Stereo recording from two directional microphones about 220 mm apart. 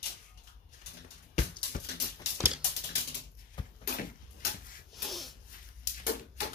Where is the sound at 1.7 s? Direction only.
40° left (ahead or behind).